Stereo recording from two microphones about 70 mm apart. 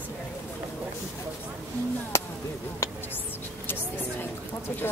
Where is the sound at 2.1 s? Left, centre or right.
Left.